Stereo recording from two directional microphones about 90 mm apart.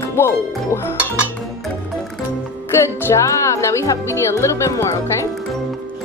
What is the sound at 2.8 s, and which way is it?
Speech, 30° left (ahead or behind).